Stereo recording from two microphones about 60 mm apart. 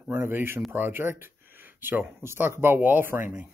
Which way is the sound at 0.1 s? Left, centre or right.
Right.